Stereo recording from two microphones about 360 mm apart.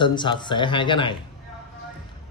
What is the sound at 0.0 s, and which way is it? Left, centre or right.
Speech, centre.